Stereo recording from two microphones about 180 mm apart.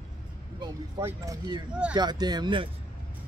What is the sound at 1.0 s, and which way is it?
Speech, 15° right (ahead or behind).